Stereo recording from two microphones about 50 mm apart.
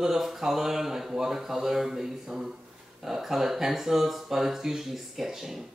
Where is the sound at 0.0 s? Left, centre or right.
Centre.